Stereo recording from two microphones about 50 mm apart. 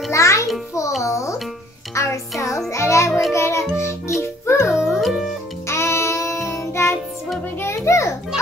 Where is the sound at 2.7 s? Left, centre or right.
Left.